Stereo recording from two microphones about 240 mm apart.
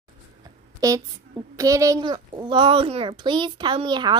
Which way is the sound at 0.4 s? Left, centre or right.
Centre.